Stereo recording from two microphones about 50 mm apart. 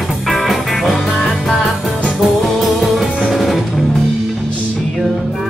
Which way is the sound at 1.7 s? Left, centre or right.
Centre.